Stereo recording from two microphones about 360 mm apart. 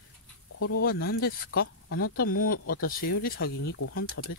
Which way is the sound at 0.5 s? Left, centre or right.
Left.